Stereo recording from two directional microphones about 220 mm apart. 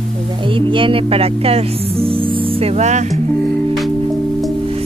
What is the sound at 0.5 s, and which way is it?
Speech, 25° right (ahead or behind).